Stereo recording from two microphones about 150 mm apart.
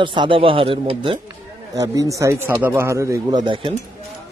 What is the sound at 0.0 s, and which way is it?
Speech, 35° right (ahead or behind).